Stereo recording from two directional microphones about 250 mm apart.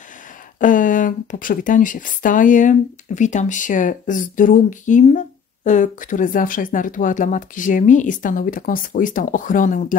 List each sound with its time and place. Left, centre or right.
0.6 s speech: left